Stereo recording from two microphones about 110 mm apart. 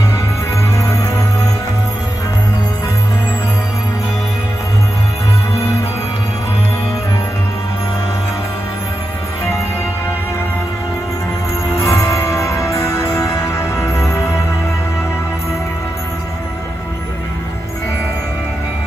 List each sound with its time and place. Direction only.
11.7 s music: 30° left (ahead or behind)